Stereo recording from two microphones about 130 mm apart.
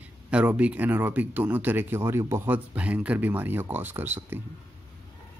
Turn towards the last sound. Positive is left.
turn(degrees=-15)  # may be behind; listen again after turning